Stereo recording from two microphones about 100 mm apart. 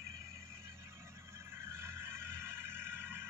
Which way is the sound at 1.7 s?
25° right (ahead or behind).